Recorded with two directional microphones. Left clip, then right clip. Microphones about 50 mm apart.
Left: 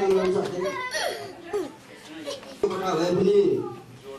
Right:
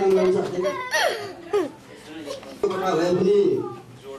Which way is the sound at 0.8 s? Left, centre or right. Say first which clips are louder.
Right 6 dB; right.